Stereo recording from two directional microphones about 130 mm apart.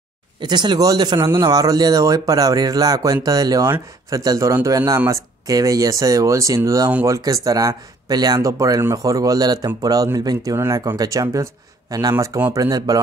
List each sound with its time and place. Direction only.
0.4 s speech: 35° right (ahead or behind)